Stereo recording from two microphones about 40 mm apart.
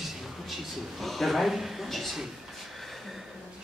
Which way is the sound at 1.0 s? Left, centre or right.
Centre.